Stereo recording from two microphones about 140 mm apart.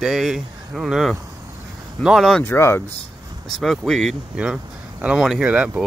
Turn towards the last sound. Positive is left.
turn(degrees=-10)  # may be behind; listen again after turning